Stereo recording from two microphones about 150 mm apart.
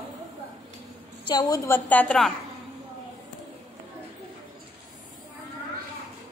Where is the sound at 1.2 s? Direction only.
25° left (ahead or behind).